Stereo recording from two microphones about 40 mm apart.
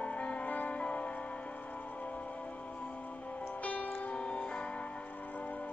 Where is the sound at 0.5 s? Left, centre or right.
Left.